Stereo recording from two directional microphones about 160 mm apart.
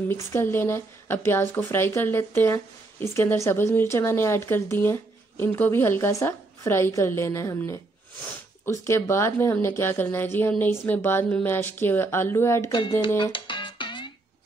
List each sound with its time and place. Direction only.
0.1 s speech: 15° left (ahead or behind)
13.2 s music: 30° left (ahead or behind)